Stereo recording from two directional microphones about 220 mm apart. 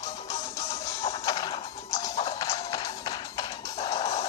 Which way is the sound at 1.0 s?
20° left (ahead or behind).